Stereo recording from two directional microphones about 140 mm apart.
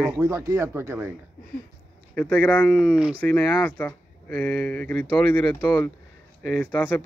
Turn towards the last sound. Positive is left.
turn(degrees=10)  # may be behind; listen again after turning